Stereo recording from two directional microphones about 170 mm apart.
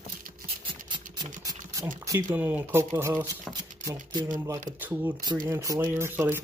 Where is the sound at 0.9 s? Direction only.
20° right (ahead or behind).